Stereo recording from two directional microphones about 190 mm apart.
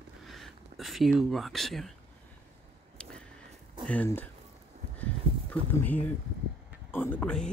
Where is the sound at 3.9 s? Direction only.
10° left (ahead or behind).